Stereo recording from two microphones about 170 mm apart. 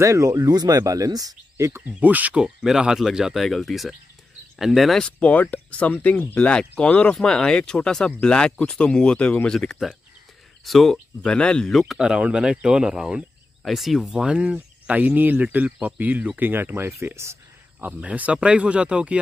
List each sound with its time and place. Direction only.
0.0 s speech: 20° right (ahead or behind)
1.9 s speech: 10° right (ahead or behind)